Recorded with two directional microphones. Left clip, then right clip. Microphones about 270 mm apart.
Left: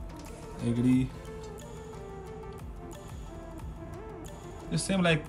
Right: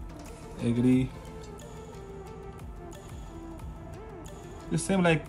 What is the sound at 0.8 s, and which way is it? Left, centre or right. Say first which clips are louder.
Speech: right 2 dB; centre.